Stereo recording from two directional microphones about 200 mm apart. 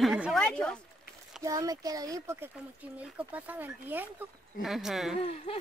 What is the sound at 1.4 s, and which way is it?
Speech, 15° right (ahead or behind).